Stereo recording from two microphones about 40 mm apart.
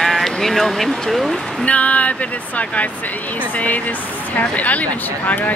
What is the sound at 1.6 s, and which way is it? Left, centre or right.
Speech, left.